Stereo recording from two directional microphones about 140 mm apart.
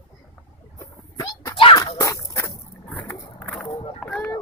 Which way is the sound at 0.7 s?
30° left (ahead or behind).